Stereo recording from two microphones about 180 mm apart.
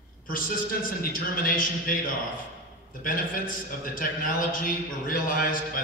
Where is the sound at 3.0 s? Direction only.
50° left (ahead or behind).